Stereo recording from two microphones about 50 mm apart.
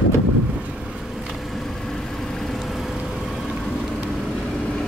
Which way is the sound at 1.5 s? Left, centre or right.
Centre.